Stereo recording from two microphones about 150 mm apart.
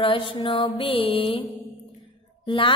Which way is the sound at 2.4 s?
35° left (ahead or behind).